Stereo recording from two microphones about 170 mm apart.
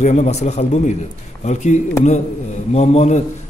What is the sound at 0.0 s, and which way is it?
A man's voice, 40° left (ahead or behind).